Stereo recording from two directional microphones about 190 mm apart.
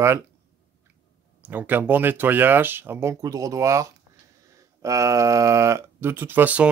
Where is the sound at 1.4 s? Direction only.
10° right (ahead or behind).